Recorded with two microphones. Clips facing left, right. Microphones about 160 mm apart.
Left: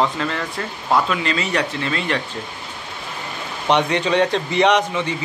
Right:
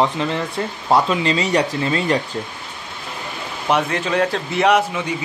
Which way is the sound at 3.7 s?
5° right (ahead or behind).